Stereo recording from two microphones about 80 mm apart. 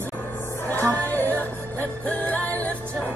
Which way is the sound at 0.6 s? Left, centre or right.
Left.